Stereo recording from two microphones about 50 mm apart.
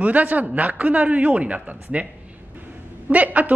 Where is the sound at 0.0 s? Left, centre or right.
Right.